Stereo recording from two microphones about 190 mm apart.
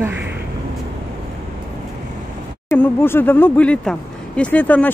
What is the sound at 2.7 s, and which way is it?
Speech, 10° left (ahead or behind).